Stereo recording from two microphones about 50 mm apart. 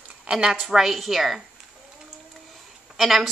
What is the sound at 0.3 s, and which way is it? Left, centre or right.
Speech, centre.